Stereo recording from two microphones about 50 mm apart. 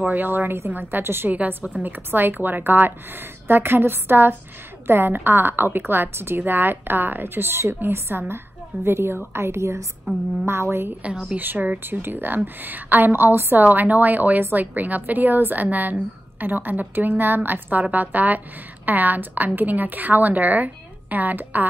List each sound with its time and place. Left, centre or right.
0.1 s a woman's voice: right
1.6 s speech: right
1.9 s a woman's voice: right
10.1 s a woman's voice: right
10.9 s speech: right
11.3 s a woman's voice: right
13.1 s a woman's voice: right